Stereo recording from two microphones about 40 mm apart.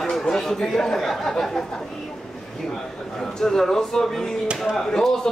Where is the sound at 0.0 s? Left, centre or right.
Centre.